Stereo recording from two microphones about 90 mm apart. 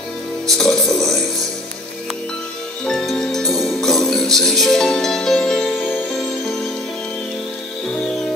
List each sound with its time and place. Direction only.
0.6 s music: 5° left (ahead or behind)
2.8 s music: 10° left (ahead or behind)
5.8 s music: 20° left (ahead or behind)